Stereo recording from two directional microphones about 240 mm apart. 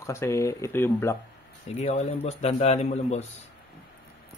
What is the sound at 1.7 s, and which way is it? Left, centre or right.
Speech, left.